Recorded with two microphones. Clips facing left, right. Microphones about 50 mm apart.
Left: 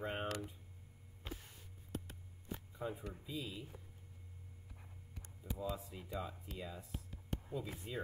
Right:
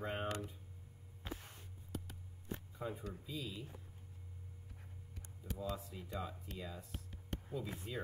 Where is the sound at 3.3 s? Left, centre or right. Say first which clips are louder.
Left 1 dB; centre.